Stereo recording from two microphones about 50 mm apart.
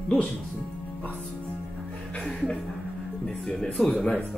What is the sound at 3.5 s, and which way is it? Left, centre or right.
Speech, centre.